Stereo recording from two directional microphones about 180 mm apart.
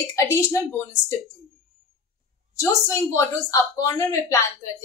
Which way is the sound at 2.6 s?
15° left (ahead or behind).